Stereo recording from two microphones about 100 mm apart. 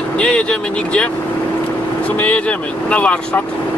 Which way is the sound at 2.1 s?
15° left (ahead or behind).